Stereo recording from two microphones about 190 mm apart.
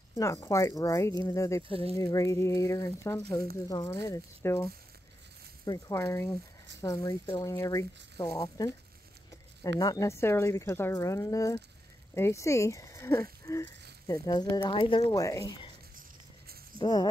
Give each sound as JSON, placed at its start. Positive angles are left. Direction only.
{"t": 0.1, "sound": "speech", "side_deg": 15}
{"t": 1.6, "sound": "speech", "side_deg": -30}
{"t": 2.0, "sound": "speech", "side_deg": 15}
{"t": 5.7, "sound": "speech", "side_deg": 15}
{"t": 9.8, "sound": "speech", "side_deg": 20}
{"t": 16.7, "sound": "speech", "side_deg": 25}